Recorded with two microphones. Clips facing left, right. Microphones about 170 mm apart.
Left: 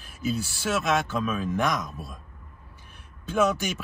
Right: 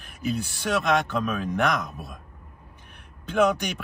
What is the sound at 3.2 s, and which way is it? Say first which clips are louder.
Speech: right 2 dB; 60° right (ahead or behind).